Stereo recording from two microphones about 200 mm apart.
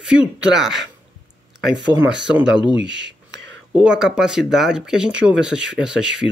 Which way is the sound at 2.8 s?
65° right (ahead or behind).